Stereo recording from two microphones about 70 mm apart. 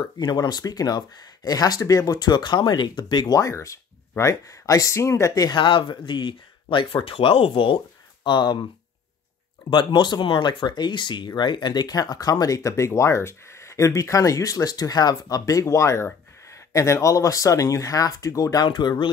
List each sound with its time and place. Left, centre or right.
0.0 s speech: left
3.3 s speech: left
5.3 s speech: left
8.3 s speech: left
9.8 s speech: left
15.6 s speech: left